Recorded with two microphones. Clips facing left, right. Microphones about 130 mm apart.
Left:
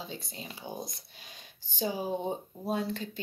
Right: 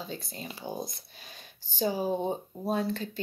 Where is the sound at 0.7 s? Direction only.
10° right (ahead or behind).